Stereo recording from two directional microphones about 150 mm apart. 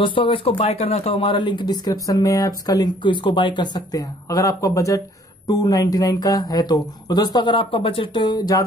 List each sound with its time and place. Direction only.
0.0 s speech: 35° left (ahead or behind)